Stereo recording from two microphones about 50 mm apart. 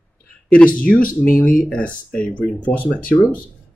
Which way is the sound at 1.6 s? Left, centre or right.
Left.